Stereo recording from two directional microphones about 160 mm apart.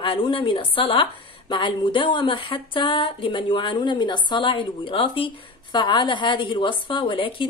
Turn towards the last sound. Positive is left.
turn(degrees=30)  # may be behind; listen again after turning